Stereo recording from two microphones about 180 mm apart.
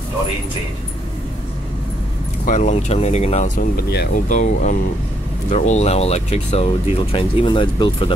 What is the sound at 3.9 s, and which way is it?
Speech, 65° left (ahead or behind).